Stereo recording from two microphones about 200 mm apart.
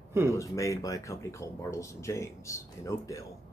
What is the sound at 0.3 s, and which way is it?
Speech, 15° left (ahead or behind).